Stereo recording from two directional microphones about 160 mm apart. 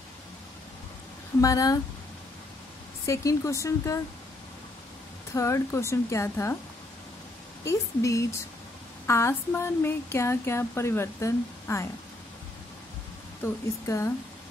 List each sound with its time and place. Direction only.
1.4 s speech: 20° left (ahead or behind)
3.1 s speech: 20° left (ahead or behind)
5.3 s speech: 20° left (ahead or behind)
7.6 s speech: 20° left (ahead or behind)
13.4 s speech: 20° left (ahead or behind)